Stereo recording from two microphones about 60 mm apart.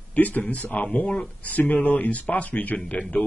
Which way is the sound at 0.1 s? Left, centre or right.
Left.